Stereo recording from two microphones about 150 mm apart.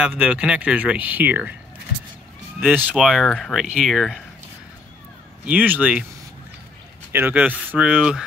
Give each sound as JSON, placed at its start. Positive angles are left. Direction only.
{"t": 0.0, "sound": "speech", "side_deg": -10}
{"t": 2.6, "sound": "speech", "side_deg": -10}
{"t": 5.4, "sound": "speech", "side_deg": -10}
{"t": 7.1, "sound": "speech", "side_deg": -15}